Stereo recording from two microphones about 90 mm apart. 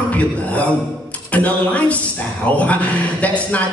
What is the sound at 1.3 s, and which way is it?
A man's voice, 15° left (ahead or behind).